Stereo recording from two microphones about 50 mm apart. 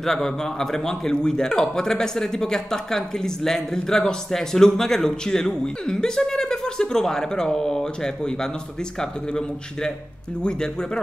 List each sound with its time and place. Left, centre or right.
0.0 s speech: centre